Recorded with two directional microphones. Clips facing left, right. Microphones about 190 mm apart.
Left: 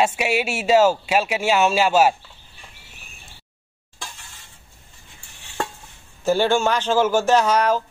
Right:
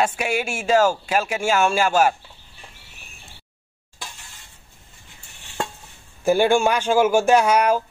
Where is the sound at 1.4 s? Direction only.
20° left (ahead or behind).